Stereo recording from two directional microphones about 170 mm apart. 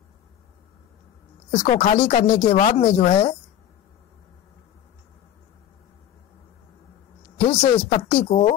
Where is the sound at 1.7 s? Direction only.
40° left (ahead or behind); by 2.5 s 60° left (ahead or behind).